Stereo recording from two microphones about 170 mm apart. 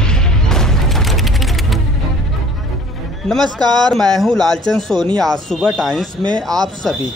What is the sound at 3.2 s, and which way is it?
Speech, 5° left (ahead or behind).